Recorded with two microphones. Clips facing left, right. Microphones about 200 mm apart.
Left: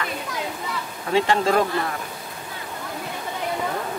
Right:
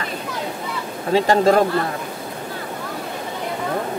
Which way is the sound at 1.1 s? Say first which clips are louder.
Right 4 dB; 40° right (ahead or behind).